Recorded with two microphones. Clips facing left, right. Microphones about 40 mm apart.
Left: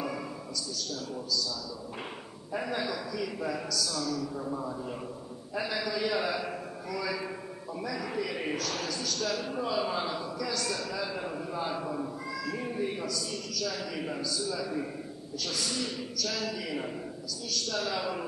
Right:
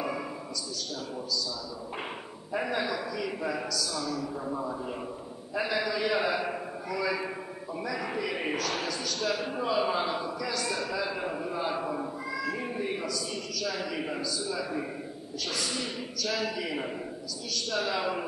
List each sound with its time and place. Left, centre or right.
2.5 s a man's voice: centre